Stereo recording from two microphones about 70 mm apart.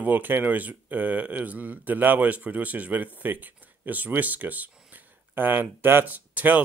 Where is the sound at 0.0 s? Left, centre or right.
Right.